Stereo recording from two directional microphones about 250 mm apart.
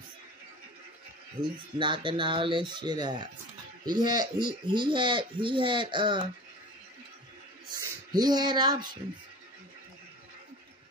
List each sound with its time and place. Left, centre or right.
1.4 s speech: centre
1.8 s speech: centre
8.1 s speech: centre